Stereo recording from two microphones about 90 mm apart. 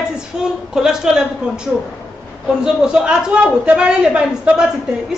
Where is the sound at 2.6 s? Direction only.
10° right (ahead or behind).